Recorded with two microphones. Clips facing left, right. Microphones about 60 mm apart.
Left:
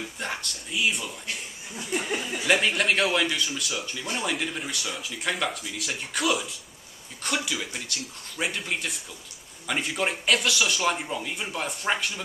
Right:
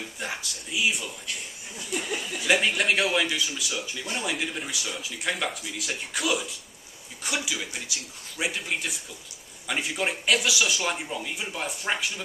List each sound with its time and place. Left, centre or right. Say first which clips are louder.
0.2 s speech: even; centre
1.8 s a sound: left 2 dB; left
2.4 s speech: even; centre